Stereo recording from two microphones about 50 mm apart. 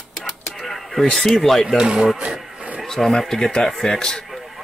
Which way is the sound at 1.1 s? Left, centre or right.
Centre.